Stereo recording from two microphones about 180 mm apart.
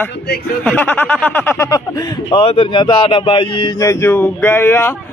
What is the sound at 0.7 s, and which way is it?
Speech, 10° left (ahead or behind).